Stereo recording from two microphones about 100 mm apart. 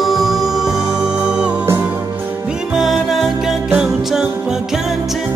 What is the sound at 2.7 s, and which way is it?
Music, 5° right (ahead or behind).